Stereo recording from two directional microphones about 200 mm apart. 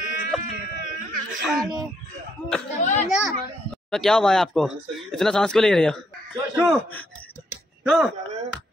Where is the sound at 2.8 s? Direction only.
35° left (ahead or behind).